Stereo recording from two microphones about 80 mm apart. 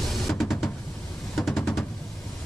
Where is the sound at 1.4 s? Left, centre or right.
Centre.